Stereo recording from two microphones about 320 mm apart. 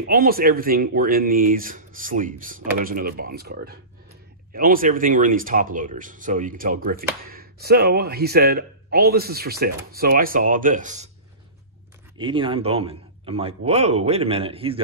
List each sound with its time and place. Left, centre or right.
0.0 s speech: right
12.2 s a man's voice: centre